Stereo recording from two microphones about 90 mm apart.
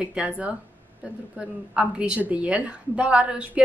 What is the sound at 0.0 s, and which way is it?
A woman's voice, 10° right (ahead or behind).